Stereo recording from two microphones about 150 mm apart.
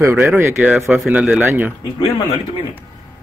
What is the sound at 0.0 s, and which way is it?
Speech, 15° right (ahead or behind).